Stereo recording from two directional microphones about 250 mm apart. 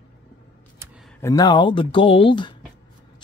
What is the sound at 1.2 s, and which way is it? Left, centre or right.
Speech, centre.